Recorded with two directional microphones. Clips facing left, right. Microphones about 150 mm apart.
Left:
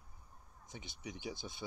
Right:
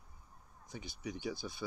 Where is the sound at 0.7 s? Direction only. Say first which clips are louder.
Right 5 dB; 20° left (ahead or behind).